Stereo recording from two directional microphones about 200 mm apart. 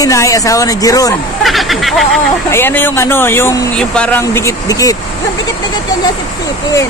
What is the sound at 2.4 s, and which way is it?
Speech, 10° left (ahead or behind).